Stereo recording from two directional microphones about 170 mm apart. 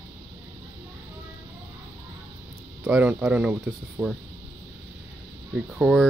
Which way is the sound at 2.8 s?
10° right (ahead or behind).